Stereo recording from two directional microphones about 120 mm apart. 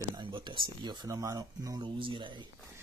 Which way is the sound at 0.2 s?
40° right (ahead or behind).